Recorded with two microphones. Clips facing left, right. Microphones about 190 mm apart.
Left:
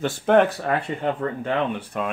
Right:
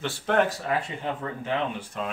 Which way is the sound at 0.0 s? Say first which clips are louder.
Left 6 dB; 55° left (ahead or behind).